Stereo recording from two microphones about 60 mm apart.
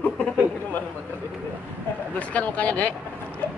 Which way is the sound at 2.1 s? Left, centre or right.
Left.